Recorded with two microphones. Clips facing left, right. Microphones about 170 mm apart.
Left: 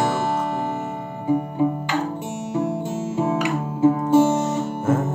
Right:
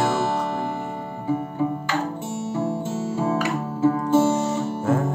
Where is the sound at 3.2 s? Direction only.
20° left (ahead or behind).